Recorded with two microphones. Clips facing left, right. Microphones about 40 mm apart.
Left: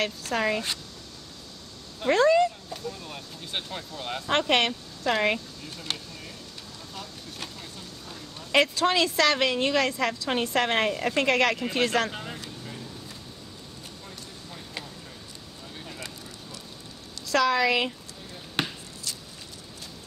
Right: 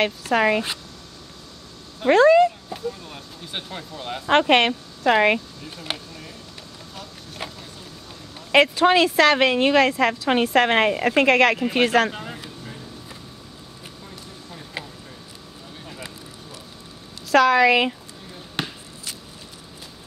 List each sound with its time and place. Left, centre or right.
0.0 s a woman's voice: right
2.0 s speech: right
2.8 s speech: centre
4.3 s a woman's voice: centre
8.5 s a woman's voice: right
12.1 s a sound: centre
17.3 s a woman's voice: right
18.6 s basketball bounce: centre